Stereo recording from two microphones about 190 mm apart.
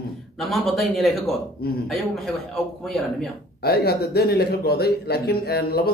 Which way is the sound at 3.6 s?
55° left (ahead or behind).